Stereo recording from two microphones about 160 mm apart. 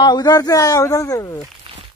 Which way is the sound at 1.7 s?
35° right (ahead or behind).